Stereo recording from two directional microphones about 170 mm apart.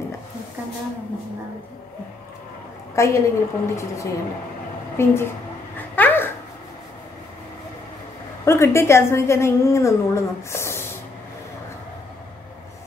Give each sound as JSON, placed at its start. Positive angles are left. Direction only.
{"t": 3.0, "sound": "a woman's voice", "side_deg": 15}
{"t": 5.8, "sound": "a sound", "side_deg": 10}
{"t": 8.5, "sound": "a woman's voice", "side_deg": 15}